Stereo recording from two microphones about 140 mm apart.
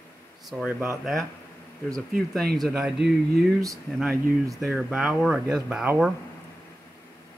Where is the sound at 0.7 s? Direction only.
15° right (ahead or behind).